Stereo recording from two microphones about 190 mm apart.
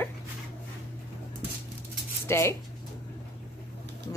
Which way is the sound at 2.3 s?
15° left (ahead or behind).